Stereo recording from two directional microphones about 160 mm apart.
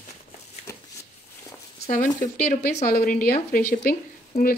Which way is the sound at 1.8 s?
55° left (ahead or behind).